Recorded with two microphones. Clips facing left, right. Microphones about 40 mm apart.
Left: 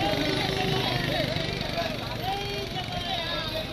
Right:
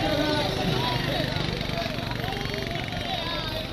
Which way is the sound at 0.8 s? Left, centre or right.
Left.